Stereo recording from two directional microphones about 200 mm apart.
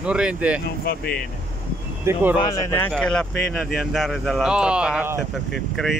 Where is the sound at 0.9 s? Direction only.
50° left (ahead or behind).